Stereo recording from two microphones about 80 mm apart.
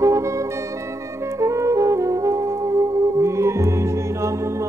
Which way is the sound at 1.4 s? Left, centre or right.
Right.